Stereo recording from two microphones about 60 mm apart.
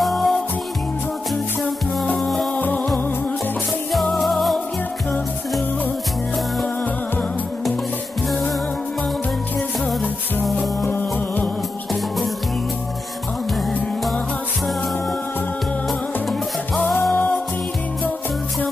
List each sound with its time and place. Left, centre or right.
0.0 s music: centre
2.6 s music: left
3.9 s music: centre
10.8 s music: left
17.1 s music: left